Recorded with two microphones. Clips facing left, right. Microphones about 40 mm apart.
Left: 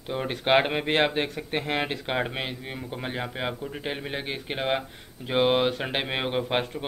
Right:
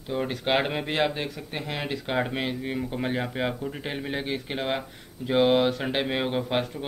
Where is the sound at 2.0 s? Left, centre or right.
Centre.